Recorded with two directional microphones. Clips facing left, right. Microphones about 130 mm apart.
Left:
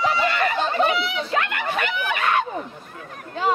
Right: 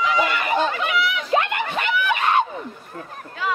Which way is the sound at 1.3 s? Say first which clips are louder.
Right 3 dB; 25° right (ahead or behind).